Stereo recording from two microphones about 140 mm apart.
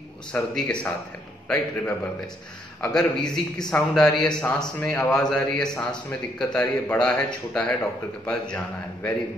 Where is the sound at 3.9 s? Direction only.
5° left (ahead or behind).